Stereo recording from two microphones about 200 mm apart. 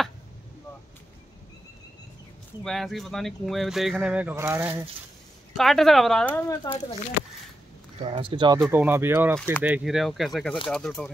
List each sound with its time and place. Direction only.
2.6 s speech: centre (ahead or behind)
5.5 s speech: centre (ahead or behind)
8.0 s speech: 25° right (ahead or behind)
8.6 s speech: 10° right (ahead or behind)